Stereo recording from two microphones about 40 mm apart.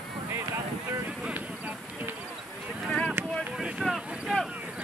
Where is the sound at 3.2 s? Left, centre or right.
Right.